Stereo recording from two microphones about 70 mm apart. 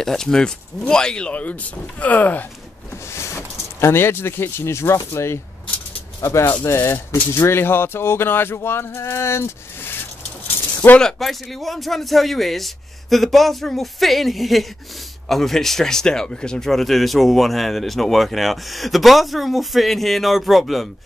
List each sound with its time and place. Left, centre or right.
0.0 s speech: centre; by 2.4 s left
3.1 s a sound: left
5.1 s speech: left
6.6 s speech: left
11.0 s speech: centre